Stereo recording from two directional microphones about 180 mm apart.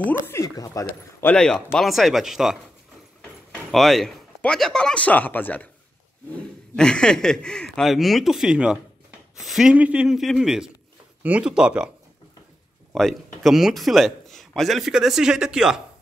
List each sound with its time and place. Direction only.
0.0 s speech: 15° left (ahead or behind)
1.3 s a man's voice: 5° left (ahead or behind)
12.9 s a man's voice: centre (ahead or behind)